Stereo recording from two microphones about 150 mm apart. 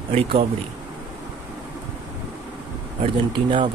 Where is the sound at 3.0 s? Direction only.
35° right (ahead or behind).